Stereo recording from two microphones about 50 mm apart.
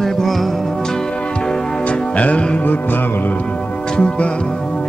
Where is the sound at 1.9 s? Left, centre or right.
Left.